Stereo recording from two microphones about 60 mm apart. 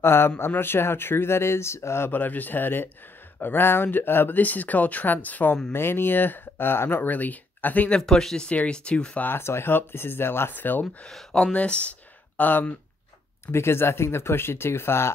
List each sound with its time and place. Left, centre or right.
0.0 s speech: left
2.0 s speech: left
5.7 s speech: left
8.0 s speech: centre
9.2 s speech: left
11.1 s speech: centre
11.5 s speech: left
13.5 s speech: left